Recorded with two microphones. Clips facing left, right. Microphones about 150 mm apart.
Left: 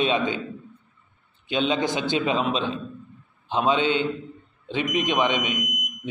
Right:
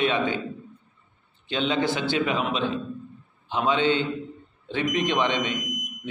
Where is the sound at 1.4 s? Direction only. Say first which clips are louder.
Left 1 dB; 15° left (ahead or behind).